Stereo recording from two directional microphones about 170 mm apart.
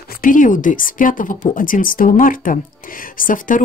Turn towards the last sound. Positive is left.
turn(degrees=55)  # may be behind; listen again after turning